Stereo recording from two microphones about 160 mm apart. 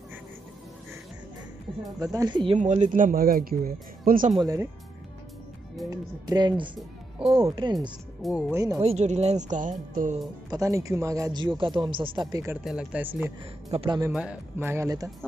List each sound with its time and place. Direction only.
2.1 s speech: 25° right (ahead or behind)
2.5 s speech: 45° right (ahead or behind)
4.4 s speech: 20° right (ahead or behind)
5.9 s speech: 25° right (ahead or behind)
8.2 s speech: centre (ahead or behind)
8.5 s speech: 20° right (ahead or behind)
8.8 s speech: 45° right (ahead or behind)
10.5 s speech: 20° right (ahead or behind)
12.6 s speech: 5° right (ahead or behind)
13.7 s speech: 35° right (ahead or behind)
14.6 s speech: 15° right (ahead or behind)